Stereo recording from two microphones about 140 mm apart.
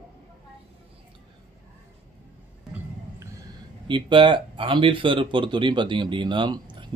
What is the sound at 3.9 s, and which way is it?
Speech, 35° right (ahead or behind).